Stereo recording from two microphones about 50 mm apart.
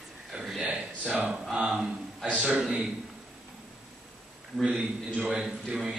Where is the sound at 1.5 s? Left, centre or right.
Centre.